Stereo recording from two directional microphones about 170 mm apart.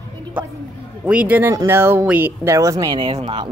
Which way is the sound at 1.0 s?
10° right (ahead or behind).